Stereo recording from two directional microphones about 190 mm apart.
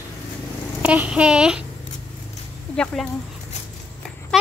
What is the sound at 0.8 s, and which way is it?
Speech, 5° right (ahead or behind).